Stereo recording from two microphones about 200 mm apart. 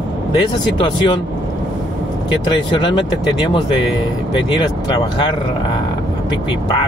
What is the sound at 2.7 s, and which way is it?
Speech, 25° left (ahead or behind).